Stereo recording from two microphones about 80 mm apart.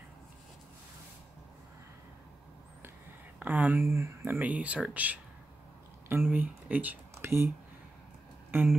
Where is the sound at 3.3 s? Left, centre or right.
Right.